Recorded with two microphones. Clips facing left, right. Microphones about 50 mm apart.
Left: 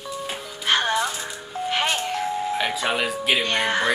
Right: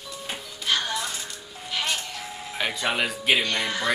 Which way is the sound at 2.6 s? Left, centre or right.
Centre.